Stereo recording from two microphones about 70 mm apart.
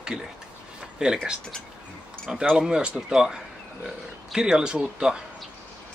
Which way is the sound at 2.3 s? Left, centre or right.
Centre.